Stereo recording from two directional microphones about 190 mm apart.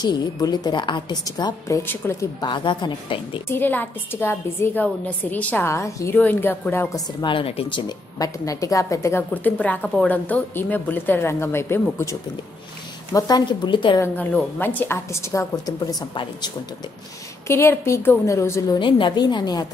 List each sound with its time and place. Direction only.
0.0 s a woman's voice: 20° left (ahead or behind)
2.5 s a woman's voice: 25° left (ahead or behind)
3.4 s a woman's voice: 10° left (ahead or behind)
7.2 s a woman's voice: 25° left (ahead or behind)
8.2 s a woman's voice: 15° left (ahead or behind)
14.0 s a woman's voice: 10° left (ahead or behind)